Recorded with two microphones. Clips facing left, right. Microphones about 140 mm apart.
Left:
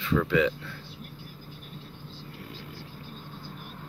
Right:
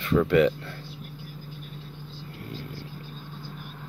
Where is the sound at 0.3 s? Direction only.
55° right (ahead or behind).